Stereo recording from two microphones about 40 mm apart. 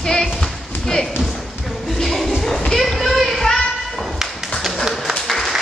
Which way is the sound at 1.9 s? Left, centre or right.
Centre.